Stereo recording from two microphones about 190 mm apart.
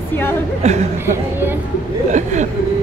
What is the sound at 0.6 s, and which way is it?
Speech, 35° right (ahead or behind).